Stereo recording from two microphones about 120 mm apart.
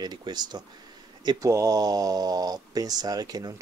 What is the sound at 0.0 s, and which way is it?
Speech, 35° right (ahead or behind).